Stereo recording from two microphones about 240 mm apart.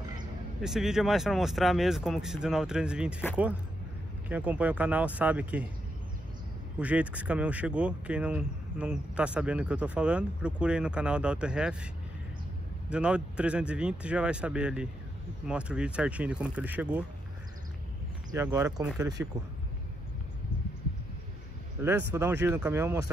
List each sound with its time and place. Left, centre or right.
0.6 s speech: centre
4.3 s speech: centre
6.8 s speech: centre
12.9 s speech: centre
18.3 s speech: centre
18.9 s speech: centre
21.8 s speech: centre